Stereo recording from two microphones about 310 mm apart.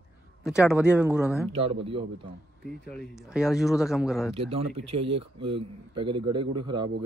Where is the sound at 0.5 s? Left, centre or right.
Centre.